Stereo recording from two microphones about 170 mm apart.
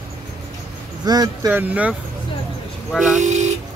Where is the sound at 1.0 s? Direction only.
20° right (ahead or behind).